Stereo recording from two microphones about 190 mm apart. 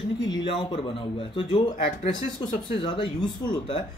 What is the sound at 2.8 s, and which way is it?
Speech, 25° left (ahead or behind).